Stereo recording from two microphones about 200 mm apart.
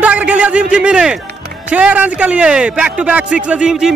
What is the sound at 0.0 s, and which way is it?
A man's voice, 5° right (ahead or behind).